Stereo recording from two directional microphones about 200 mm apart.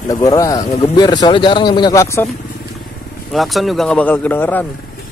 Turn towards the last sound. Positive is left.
turn(degrees=10)  # may be behind; listen again after turning